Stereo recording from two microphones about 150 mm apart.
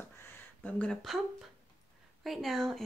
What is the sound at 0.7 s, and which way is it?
Speech, 10° left (ahead or behind).